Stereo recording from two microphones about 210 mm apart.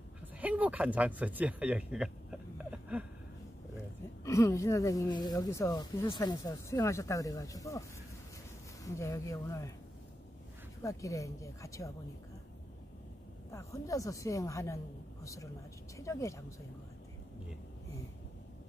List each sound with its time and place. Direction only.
0.4 s speech: 5° right (ahead or behind)
4.2 s speech: 15° left (ahead or behind)
8.8 s speech: 15° left (ahead or behind)
10.8 s speech: 15° left (ahead or behind)
13.5 s speech: 15° left (ahead or behind)
16.0 s speech: 15° left (ahead or behind)